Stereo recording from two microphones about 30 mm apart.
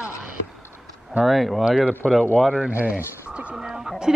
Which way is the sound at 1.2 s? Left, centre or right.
Centre.